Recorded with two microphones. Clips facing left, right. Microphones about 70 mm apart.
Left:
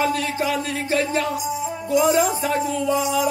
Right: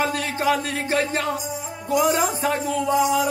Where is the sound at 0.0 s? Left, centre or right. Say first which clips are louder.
Left 1 dB; right.